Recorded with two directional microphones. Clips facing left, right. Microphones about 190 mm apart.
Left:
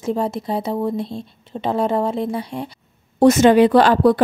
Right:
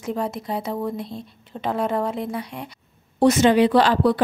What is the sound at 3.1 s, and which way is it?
A woman's voice, 45° left (ahead or behind).